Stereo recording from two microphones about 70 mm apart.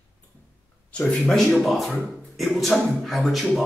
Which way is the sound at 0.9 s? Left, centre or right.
Centre.